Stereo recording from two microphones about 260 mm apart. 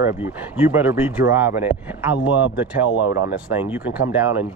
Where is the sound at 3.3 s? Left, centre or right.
Centre.